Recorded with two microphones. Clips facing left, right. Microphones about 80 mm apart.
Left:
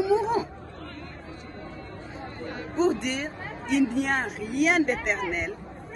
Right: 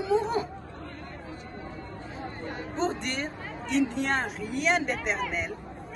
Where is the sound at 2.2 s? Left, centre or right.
Right.